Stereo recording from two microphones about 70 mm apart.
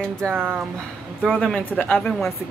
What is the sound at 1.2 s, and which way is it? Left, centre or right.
Speech, centre.